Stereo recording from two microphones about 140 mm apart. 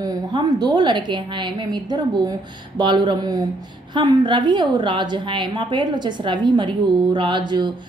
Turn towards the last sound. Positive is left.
turn(degrees=-30)  # may be behind; listen again after turning